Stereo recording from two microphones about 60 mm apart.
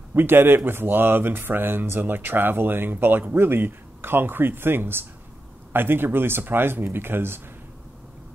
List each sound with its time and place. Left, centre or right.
0.1 s speech: right